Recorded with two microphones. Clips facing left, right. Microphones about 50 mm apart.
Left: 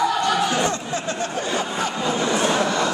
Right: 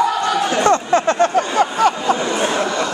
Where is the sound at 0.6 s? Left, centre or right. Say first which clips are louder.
Right 9 dB; right.